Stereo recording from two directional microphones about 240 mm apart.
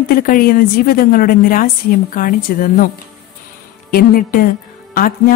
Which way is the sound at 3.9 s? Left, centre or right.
Left.